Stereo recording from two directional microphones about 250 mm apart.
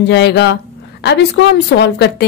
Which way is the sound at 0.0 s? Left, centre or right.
Left.